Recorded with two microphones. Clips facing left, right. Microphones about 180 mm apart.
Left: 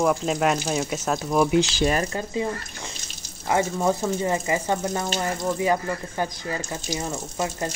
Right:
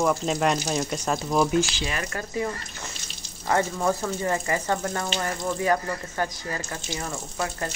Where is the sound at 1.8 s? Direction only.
40° left (ahead or behind).